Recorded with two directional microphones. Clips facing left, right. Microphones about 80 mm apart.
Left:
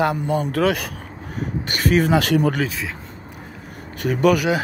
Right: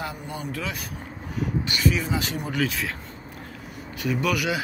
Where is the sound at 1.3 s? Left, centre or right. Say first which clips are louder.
Left 1 dB; left.